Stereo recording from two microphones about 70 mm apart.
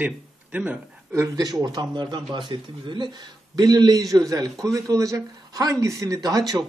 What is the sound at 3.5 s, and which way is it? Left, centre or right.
A man's voice, right.